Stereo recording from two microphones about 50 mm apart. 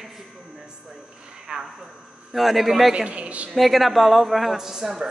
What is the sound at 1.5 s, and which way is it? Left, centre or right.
Speech, centre.